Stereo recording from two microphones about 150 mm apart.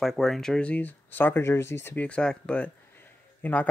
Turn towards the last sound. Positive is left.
turn(degrees=10)  # may be behind; listen again after turning